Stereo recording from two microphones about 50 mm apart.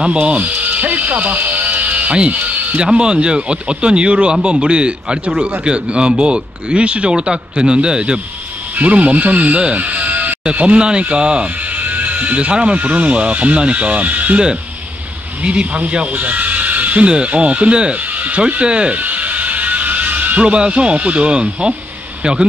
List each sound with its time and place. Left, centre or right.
0.0 s music: right
2.9 s speech: centre
11.7 s speech: right
15.4 s a man's voice: right